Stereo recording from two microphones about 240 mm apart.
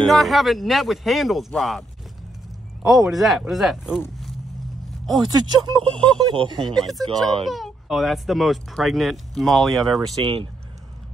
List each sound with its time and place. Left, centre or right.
0.0 s speech: centre
2.9 s speech: centre
5.2 s speech: centre
6.6 s speech: centre
10.2 s speech: right